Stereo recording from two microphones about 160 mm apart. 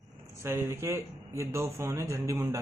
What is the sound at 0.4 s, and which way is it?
A man's voice, 15° right (ahead or behind).